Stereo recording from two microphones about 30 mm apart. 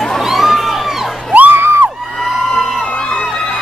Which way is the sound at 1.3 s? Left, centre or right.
Right.